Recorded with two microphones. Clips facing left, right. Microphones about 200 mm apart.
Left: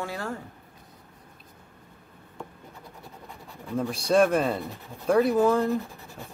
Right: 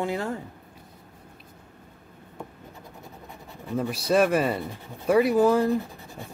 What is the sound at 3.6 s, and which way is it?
Speech, 5° right (ahead or behind).